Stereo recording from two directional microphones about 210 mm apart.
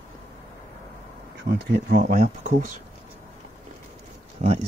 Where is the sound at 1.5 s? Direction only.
50° right (ahead or behind).